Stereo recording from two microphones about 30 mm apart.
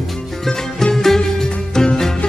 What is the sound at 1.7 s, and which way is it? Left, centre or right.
Music, left.